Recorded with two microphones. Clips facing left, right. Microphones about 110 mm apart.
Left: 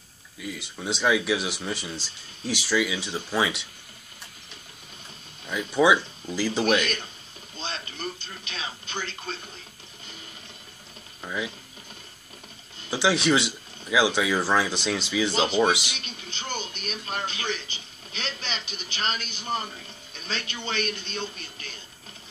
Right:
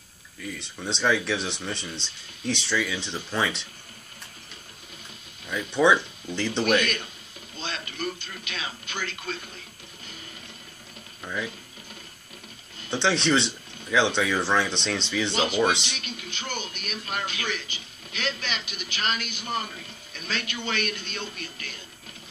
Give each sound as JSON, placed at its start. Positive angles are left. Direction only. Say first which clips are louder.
{"t": 0.4, "sound": "speech", "louder": "left 1 dB", "side_deg": 5}
{"t": 5.5, "sound": "speech", "louder": "even", "side_deg": 5}
{"t": 6.6, "sound": "a man's voice", "louder": "right 1 dB", "side_deg": 30}
{"t": 7.5, "sound": "television", "louder": "right 1 dB", "side_deg": 30}
{"t": 11.2, "sound": "speech", "louder": "left 1 dB", "side_deg": 10}
{"t": 12.9, "sound": "speech", "louder": "left 1 dB", "side_deg": 5}
{"t": 15.3, "sound": "a man's voice", "louder": "left 1 dB", "side_deg": 30}